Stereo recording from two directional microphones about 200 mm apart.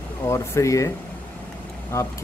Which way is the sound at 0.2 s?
15° left (ahead or behind).